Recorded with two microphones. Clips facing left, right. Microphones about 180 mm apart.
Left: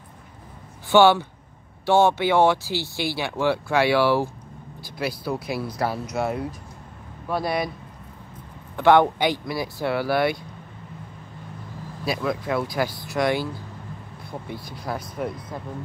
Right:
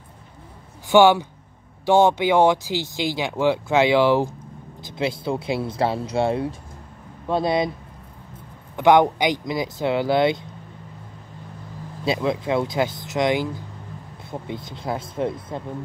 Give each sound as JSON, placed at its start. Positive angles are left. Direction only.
{"t": 0.8, "sound": "speech", "side_deg": -15}
{"t": 8.7, "sound": "speech", "side_deg": -15}
{"t": 12.0, "sound": "speech", "side_deg": -25}